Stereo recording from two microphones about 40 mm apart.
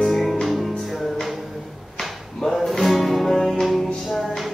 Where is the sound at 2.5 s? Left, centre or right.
Centre.